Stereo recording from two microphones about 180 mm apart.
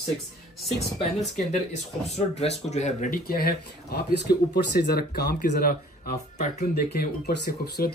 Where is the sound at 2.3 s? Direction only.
35° left (ahead or behind).